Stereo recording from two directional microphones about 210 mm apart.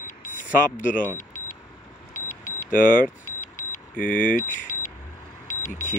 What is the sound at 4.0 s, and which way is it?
Speech, 40° left (ahead or behind).